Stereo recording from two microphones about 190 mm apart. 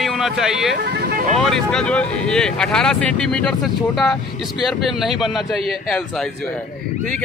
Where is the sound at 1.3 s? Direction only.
Centre (ahead or behind).